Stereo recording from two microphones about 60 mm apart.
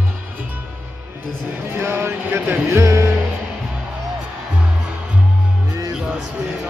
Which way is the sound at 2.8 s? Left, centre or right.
Right.